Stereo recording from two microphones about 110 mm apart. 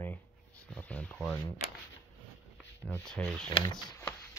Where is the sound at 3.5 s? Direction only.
45° left (ahead or behind).